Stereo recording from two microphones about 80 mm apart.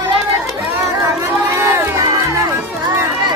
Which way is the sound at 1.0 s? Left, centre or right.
Right.